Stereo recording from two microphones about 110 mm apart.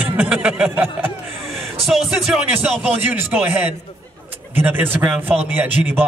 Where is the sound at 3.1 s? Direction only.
15° right (ahead or behind).